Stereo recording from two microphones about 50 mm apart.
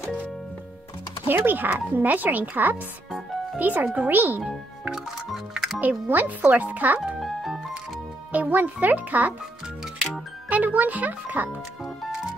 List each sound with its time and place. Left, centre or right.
1.2 s a child's voice: right
4.4 s speech: centre
5.8 s a child's voice: right
7.2 s music: centre
8.3 s a child's voice: right
10.5 s a child's voice: right